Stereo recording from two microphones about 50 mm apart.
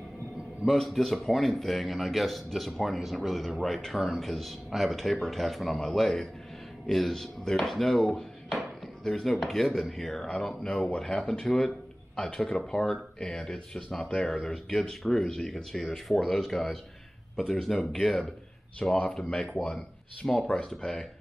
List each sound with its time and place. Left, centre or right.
0.7 s speech: centre; by 11.0 s left
11.0 s speech: centre
14.3 s speech: centre; by 19.7 s left
20.2 s speech: centre